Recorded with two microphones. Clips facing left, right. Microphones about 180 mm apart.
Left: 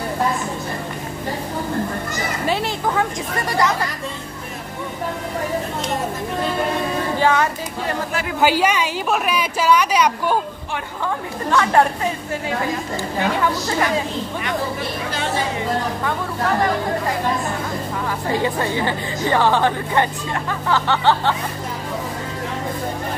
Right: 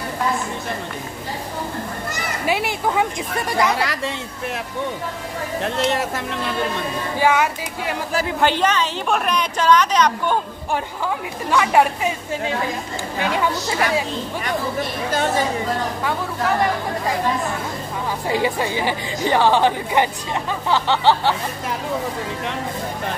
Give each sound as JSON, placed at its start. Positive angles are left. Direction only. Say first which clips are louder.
{"t": 2.4, "sound": "speech", "louder": "right 1 dB", "side_deg": -10}
{"t": 3.7, "sound": "speech", "louder": "right 2 dB", "side_deg": -80}
{"t": 5.6, "sound": "speech", "louder": "right 3 dB", "side_deg": -75}
{"t": 7.2, "sound": "speech", "louder": "right 1 dB", "side_deg": -10}
{"t": 8.4, "sound": "a woman's voice", "louder": "left 2 dB", "side_deg": 5}
{"t": 11.5, "sound": "speech", "louder": "even", "side_deg": -10}
{"t": 13.4, "sound": "speech", "louder": "left 1 dB", "side_deg": -15}
{"t": 18.3, "sound": "speech", "louder": "even", "side_deg": -15}